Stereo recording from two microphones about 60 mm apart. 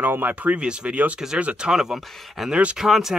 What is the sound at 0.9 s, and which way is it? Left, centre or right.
Speech, right.